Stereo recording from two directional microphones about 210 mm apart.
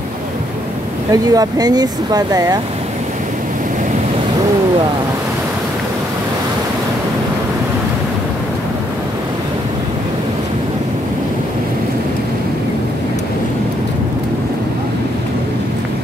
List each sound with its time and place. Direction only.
1.1 s speech: 15° right (ahead or behind)